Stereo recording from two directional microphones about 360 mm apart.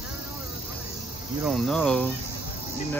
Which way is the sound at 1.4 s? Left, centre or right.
Centre.